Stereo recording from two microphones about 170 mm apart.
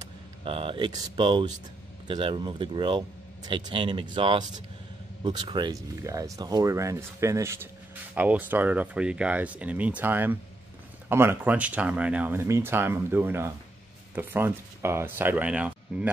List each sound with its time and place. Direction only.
0.0 s speech: 30° right (ahead or behind); by 16.1 s 5° right (ahead or behind)